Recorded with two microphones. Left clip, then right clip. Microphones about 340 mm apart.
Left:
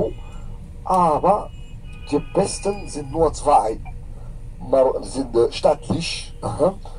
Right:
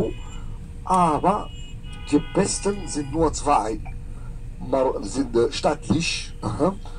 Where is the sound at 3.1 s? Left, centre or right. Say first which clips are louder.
Left 4 dB; left.